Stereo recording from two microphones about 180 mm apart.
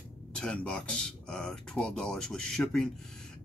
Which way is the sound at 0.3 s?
5° left (ahead or behind).